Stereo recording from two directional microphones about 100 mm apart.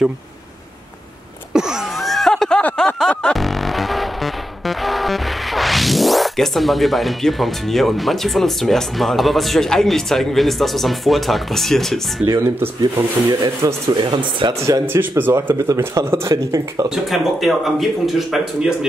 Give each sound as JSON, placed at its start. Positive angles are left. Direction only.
{"t": 1.5, "sound": "a sound", "side_deg": -5}
{"t": 3.0, "sound": "music", "side_deg": 10}
{"t": 12.3, "sound": "speech", "side_deg": -25}
{"t": 13.9, "sound": "speech", "side_deg": -50}
{"t": 14.9, "sound": "speech", "side_deg": -20}
{"t": 16.9, "sound": "speech", "side_deg": 0}